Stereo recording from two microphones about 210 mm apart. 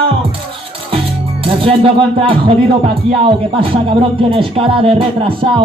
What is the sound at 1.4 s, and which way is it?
Speech, 25° right (ahead or behind).